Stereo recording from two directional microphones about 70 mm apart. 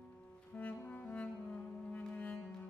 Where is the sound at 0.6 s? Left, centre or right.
Left.